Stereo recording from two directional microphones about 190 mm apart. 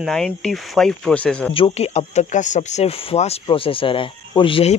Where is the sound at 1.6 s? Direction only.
30° left (ahead or behind).